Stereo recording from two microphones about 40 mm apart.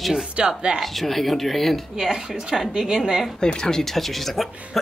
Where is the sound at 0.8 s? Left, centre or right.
Centre.